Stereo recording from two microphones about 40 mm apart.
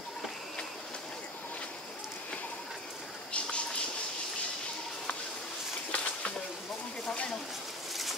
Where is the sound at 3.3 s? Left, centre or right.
Left.